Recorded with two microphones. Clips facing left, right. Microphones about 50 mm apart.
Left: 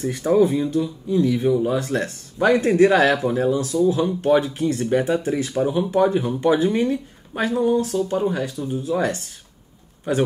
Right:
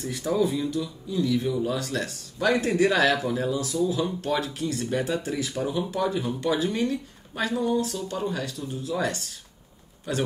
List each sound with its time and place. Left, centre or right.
0.0 s speech: left